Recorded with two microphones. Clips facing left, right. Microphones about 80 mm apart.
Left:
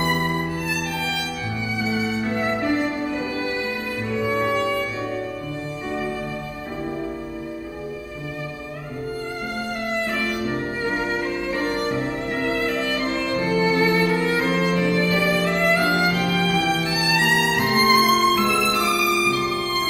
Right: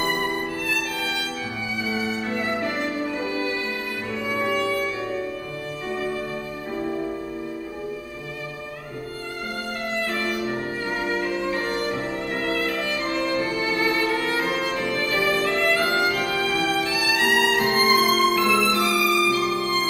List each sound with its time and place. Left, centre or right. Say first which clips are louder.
0.7 s music: left 1 dB; centre
4.2 s music: left 3 dB; left
12.6 s violin: left 3 dB; left
13.3 s music: left 4 dB; left